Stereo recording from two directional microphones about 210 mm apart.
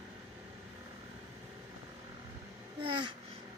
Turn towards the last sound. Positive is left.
turn(degrees=-25)  # may be behind; listen again after turning